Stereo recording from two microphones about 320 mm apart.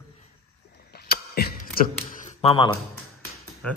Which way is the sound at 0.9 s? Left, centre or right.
Left.